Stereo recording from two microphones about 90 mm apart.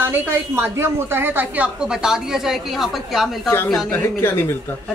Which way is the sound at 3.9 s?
25° left (ahead or behind).